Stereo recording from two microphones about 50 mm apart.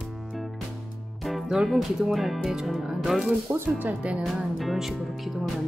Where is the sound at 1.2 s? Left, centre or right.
Centre.